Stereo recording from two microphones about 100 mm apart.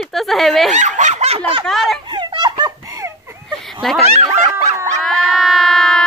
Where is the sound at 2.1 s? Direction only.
50° right (ahead or behind).